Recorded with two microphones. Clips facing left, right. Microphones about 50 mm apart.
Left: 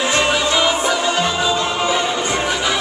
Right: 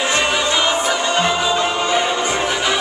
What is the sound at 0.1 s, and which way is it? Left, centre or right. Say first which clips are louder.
Music: left 2 dB; centre.